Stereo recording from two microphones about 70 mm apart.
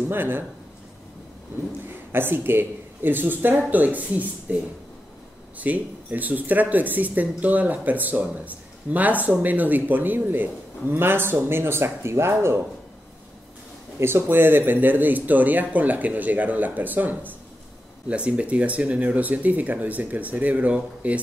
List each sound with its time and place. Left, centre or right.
0.1 s speech: right
2.1 s speech: right
5.6 s speech: right
13.9 s speech: right; by 21.2 s centre